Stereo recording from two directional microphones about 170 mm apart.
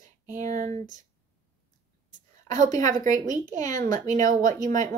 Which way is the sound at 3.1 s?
20° left (ahead or behind).